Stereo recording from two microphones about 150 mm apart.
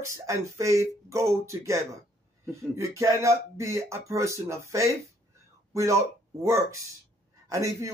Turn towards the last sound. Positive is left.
turn(degrees=-20)  # may be behind; listen again after turning